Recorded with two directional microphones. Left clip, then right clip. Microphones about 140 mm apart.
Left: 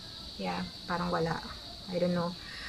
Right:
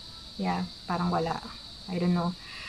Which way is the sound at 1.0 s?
10° right (ahead or behind).